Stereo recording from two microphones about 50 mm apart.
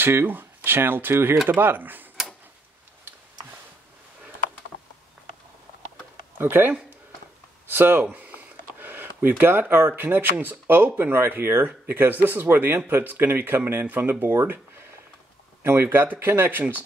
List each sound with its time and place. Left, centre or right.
0.0 s speech: right
6.3 s speech: right
8.0 s a sound: right
10.3 s speech: right
15.6 s speech: right